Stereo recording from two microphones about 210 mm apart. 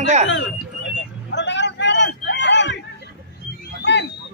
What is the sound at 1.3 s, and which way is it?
Hubbub, 55° left (ahead or behind).